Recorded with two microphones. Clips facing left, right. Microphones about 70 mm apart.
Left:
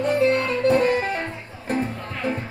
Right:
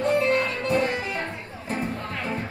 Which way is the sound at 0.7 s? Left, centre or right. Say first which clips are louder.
Left 7 dB; left.